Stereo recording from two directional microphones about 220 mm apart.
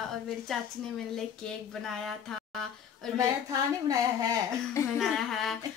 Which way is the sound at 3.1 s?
15° right (ahead or behind).